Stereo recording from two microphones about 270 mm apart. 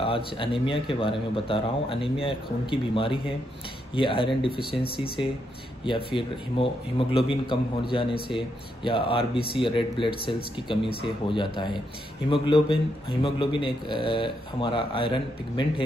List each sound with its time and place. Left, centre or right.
0.0 s speech: centre
5.9 s a man's voice: centre